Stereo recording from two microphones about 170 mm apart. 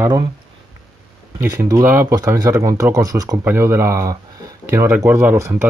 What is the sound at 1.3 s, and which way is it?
Speech, 15° right (ahead or behind).